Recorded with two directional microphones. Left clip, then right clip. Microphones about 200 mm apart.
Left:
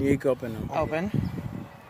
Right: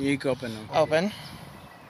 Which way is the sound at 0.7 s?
45° right (ahead or behind).